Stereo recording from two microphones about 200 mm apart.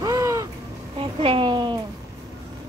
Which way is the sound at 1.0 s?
25° right (ahead or behind).